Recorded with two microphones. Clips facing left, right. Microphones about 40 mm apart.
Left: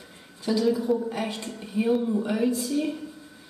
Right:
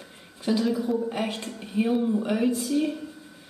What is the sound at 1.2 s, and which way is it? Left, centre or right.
Speech, right.